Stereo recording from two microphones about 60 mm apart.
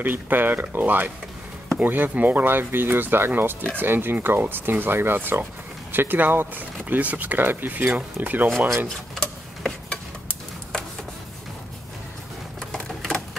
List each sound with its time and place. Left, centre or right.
0.0 s speech: right
8.8 s tick-tock: centre
12.5 s typewriter: centre